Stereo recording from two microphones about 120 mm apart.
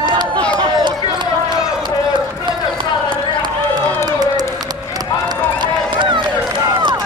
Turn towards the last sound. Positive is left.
turn(degrees=-40)  # may be behind; listen again after turning